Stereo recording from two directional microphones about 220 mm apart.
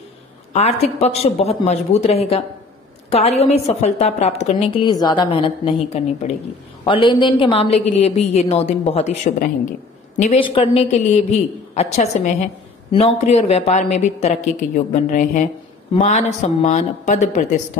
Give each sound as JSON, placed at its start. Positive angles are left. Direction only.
{"t": 0.5, "sound": "a woman's voice", "side_deg": 30}